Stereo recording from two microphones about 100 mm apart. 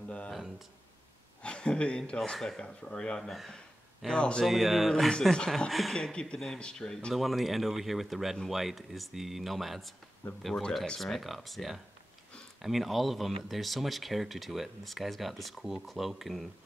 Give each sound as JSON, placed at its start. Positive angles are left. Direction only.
{"t": 1.4, "sound": "speech", "side_deg": 10}
{"t": 4.5, "sound": "speech", "side_deg": 0}